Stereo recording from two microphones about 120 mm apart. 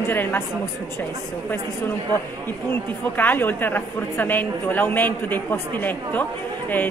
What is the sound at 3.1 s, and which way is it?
A woman's voice, 15° left (ahead or behind).